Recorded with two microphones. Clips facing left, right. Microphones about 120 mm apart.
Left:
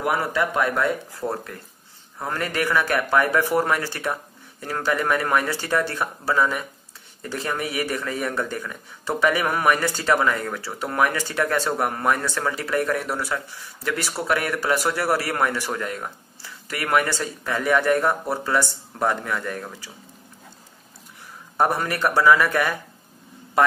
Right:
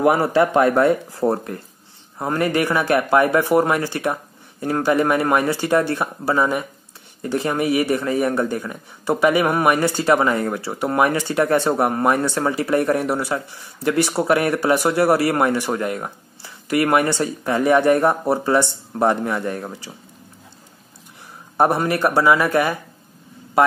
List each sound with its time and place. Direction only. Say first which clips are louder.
0.0 s a man's voice: right 7 dB; 30° right (ahead or behind)
21.5 s a man's voice: right 4 dB; 20° right (ahead or behind)